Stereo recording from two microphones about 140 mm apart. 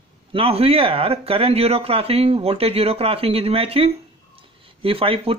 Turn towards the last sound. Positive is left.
turn(degrees=-45)  # may be behind; listen again after turning